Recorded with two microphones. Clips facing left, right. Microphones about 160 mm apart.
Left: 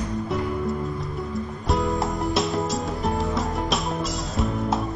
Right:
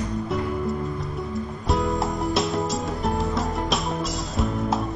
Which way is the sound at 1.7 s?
Centre (ahead or behind).